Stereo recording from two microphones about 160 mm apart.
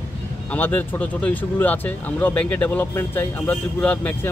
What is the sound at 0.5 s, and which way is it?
Speech, 10° left (ahead or behind).